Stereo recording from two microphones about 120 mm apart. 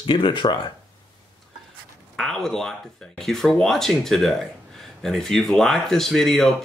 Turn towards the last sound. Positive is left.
turn(degrees=5)  # may be behind; listen again after turning